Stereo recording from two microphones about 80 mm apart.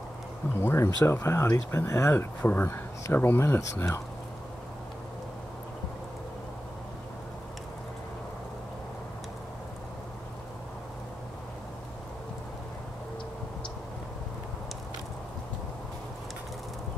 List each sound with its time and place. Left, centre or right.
0.6 s speech: left